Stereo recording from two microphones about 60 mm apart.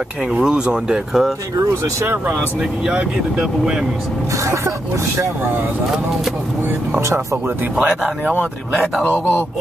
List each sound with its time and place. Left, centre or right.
0.3 s speech: centre
2.9 s speech: centre
6.9 s speech: right
7.8 s speech: right
9.0 s speech: left